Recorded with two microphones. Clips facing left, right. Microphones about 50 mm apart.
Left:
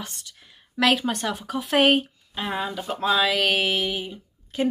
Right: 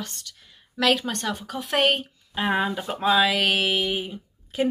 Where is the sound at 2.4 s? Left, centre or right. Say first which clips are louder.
Right 4 dB; centre.